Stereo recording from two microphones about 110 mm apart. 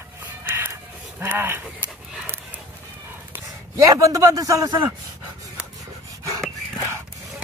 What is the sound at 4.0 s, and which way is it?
Speech, 30° right (ahead or behind).